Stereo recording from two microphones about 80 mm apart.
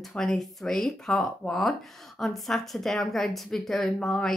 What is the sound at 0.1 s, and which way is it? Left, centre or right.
Speech, centre.